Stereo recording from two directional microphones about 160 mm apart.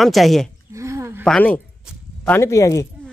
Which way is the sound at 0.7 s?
20° right (ahead or behind).